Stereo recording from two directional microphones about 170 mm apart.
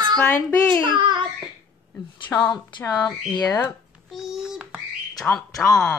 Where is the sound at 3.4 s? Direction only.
15° left (ahead or behind).